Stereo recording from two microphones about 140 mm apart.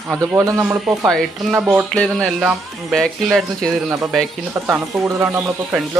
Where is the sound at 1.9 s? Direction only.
5° left (ahead or behind).